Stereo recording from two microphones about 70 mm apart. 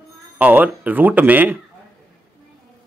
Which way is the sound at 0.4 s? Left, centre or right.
Right.